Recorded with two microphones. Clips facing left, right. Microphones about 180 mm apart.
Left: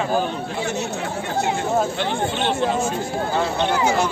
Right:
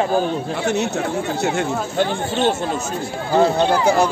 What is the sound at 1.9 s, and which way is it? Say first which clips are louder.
Speech: right 3 dB; 45° right (ahead or behind).